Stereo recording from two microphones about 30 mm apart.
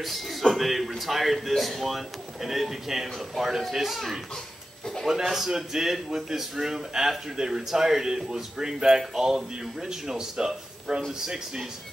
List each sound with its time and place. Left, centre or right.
0.0 s speech: centre
5.3 s speech: centre